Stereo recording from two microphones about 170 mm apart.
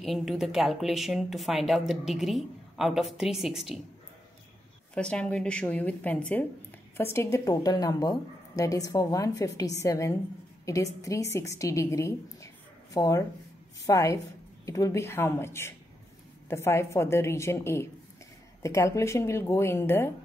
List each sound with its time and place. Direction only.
0.0 s a woman's voice: centre (ahead or behind)
4.9 s a woman's voice: 5° left (ahead or behind)